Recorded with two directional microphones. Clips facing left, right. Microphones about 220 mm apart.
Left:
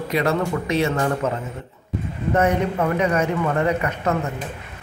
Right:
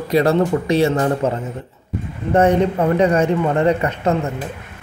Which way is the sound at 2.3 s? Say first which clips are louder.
Right 5 dB; 30° right (ahead or behind).